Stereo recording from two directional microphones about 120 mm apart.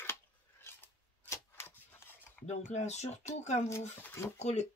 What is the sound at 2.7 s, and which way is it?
Speech, 70° left (ahead or behind).